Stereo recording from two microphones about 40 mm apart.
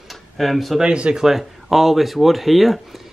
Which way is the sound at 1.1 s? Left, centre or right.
Centre.